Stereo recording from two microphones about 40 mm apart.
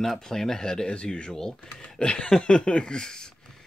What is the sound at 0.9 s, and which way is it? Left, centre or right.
Speech, left.